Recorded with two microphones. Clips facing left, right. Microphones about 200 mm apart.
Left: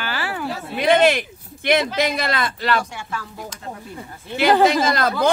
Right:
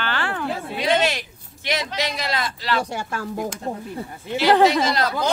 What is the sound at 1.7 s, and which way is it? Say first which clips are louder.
Speech: left 7 dB; 55° left (ahead or behind).